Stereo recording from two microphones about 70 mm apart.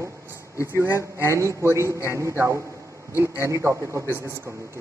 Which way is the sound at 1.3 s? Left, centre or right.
Right.